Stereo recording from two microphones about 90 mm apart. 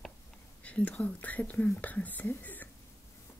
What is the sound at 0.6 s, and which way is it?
Speech, 15° left (ahead or behind).